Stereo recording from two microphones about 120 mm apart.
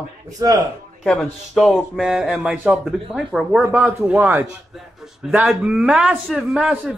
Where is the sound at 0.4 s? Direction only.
30° right (ahead or behind).